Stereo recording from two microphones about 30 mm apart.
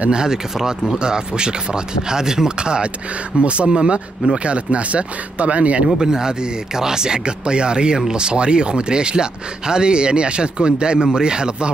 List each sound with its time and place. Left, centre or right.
0.1 s speech: right
0.6 s speech: centre
0.9 s speech: right
2.5 s speech: right
3.3 s speech: right
3.6 s speech: right
4.4 s speech: right
5.9 s speech: right